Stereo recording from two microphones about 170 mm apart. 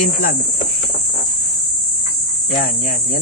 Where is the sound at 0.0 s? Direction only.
55° left (ahead or behind).